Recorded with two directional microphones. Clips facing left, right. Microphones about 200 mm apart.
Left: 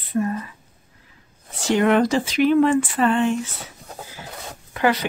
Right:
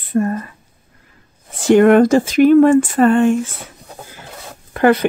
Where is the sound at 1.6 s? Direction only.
50° right (ahead or behind).